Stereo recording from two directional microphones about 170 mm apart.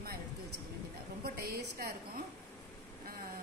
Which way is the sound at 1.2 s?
70° right (ahead or behind).